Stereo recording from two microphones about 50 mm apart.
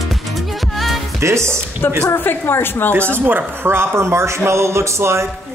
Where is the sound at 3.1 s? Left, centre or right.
Right.